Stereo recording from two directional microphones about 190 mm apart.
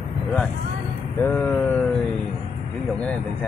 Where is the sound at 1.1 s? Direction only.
10° left (ahead or behind).